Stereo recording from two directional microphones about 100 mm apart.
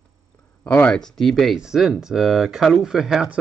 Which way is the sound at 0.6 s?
15° left (ahead or behind).